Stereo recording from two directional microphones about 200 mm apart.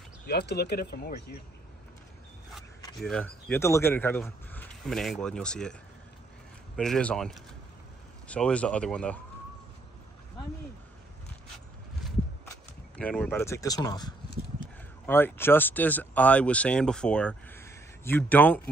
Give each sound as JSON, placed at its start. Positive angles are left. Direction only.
{"t": 0.3, "sound": "speech", "side_deg": 55}
{"t": 3.0, "sound": "speech", "side_deg": 5}
{"t": 6.8, "sound": "speech", "side_deg": 5}
{"t": 12.9, "sound": "speech", "side_deg": 5}